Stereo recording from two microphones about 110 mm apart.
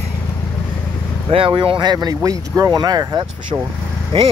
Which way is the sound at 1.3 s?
55° right (ahead or behind).